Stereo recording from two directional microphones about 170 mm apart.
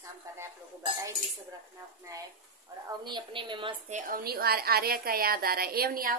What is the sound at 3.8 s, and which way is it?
Speech, 45° right (ahead or behind).